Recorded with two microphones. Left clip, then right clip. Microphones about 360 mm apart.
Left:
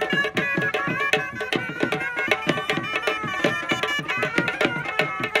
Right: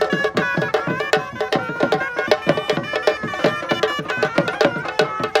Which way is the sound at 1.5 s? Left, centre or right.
Centre.